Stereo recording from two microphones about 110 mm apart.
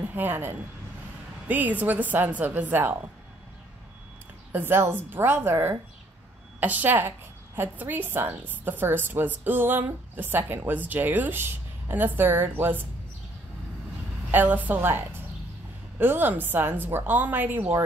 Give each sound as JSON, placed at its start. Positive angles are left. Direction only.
{"t": 0.1, "sound": "a woman's voice", "side_deg": -20}
{"t": 4.5, "sound": "a woman's voice", "side_deg": -20}
{"t": 14.3, "sound": "a woman's voice", "side_deg": -15}